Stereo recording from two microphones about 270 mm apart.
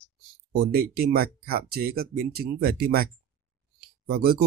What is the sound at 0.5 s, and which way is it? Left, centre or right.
Speech, right.